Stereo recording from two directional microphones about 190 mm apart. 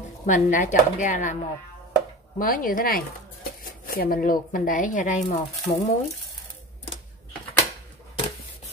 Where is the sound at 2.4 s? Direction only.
45° left (ahead or behind).